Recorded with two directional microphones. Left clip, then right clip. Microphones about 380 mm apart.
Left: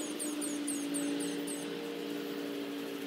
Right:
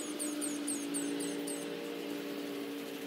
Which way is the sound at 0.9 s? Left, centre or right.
Centre.